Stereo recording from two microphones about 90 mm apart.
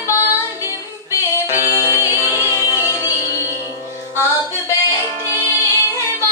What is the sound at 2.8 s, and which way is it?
Music, 35° left (ahead or behind).